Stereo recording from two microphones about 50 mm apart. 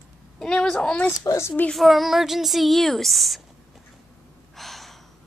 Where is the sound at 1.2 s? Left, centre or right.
Left.